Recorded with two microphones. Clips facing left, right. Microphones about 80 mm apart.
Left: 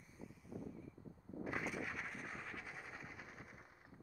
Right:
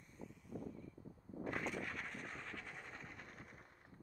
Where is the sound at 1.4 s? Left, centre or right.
Centre.